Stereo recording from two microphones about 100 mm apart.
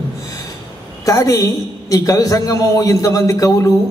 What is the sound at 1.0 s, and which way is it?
A man's voice, 35° left (ahead or behind).